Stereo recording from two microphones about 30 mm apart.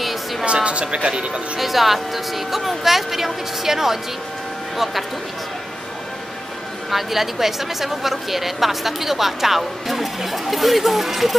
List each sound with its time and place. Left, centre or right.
0.0 s a sound: centre
0.7 s speech: right
1.6 s speech: centre
6.9 s speech: centre